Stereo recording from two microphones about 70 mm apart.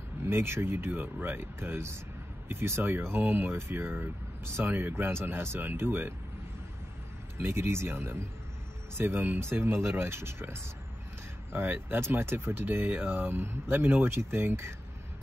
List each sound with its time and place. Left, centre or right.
0.2 s speech: right
7.3 s speech: right